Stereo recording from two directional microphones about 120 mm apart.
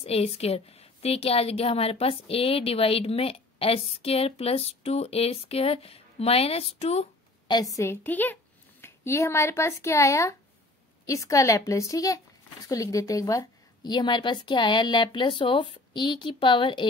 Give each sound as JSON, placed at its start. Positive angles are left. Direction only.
{"t": 0.0, "sound": "a woman's voice", "side_deg": 55}
{"t": 7.4, "sound": "a woman's voice", "side_deg": 35}